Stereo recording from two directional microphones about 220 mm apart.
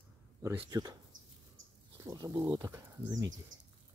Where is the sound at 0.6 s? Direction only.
15° right (ahead or behind).